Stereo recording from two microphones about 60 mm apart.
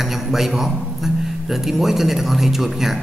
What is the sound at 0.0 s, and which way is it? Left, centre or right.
A man's voice, centre.